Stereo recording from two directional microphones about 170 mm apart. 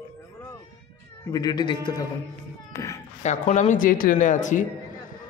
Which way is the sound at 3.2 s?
45° left (ahead or behind).